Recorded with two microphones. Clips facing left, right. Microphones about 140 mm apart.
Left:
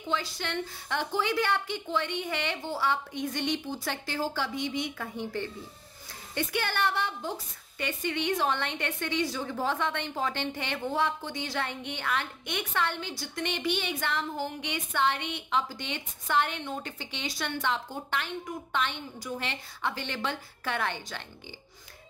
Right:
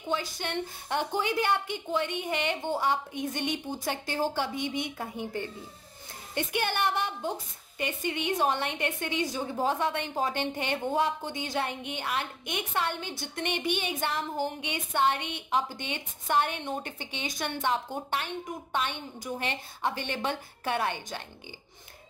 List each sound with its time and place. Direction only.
0.4 s a woman's voice: 15° right (ahead or behind)